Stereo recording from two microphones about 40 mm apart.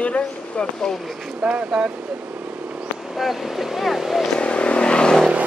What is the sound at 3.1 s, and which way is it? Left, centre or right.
Speech, centre.